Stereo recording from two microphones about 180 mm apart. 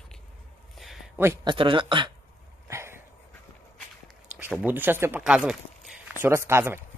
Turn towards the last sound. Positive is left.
turn(degrees=-15)  # may be behind; listen again after turning